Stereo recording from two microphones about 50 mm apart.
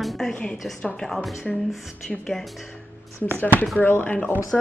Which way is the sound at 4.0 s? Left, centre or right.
Left.